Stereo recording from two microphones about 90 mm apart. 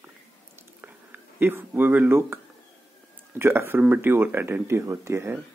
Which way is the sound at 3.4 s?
30° right (ahead or behind).